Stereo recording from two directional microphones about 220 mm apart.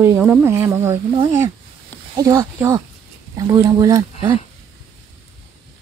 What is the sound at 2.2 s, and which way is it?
Speech, 15° right (ahead or behind).